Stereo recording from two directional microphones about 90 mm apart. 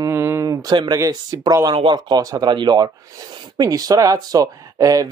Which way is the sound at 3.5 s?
45° right (ahead or behind).